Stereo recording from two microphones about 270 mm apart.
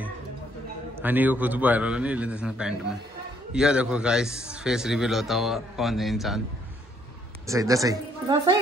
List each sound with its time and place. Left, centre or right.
0.9 s a man's voice: centre
7.4 s a woman's voice: centre